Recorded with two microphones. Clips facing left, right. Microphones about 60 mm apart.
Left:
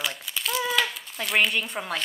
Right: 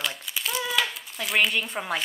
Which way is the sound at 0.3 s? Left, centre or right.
Centre.